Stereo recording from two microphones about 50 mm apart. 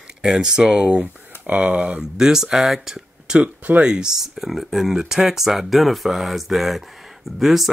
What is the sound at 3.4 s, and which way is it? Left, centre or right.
Speech, right.